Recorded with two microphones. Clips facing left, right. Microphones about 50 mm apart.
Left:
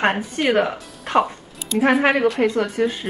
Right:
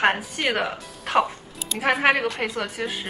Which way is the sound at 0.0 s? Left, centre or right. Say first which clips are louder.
Left 2 dB; centre.